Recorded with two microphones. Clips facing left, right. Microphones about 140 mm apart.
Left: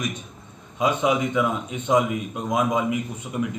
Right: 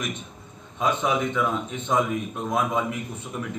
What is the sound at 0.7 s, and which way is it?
A man's voice, 15° left (ahead or behind).